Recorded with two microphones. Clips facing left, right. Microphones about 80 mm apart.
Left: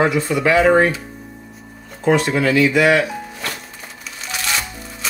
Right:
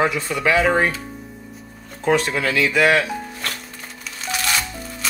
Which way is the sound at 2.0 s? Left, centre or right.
Centre.